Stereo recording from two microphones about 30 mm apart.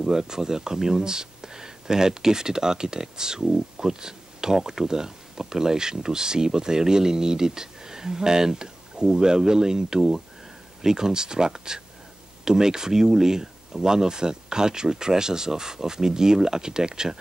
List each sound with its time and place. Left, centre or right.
0.1 s speech: centre